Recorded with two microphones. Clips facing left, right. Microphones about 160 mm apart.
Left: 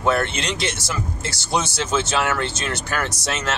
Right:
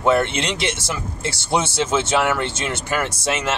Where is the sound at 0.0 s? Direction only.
20° right (ahead or behind).